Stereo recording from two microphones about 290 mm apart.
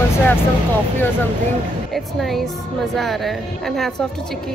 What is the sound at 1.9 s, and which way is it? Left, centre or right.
A woman's voice, centre.